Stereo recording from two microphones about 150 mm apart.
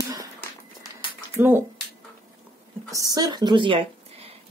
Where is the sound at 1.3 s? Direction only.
15° right (ahead or behind).